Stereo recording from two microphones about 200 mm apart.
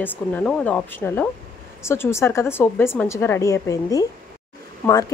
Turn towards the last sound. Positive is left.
turn(degrees=10)  # may be behind; listen again after turning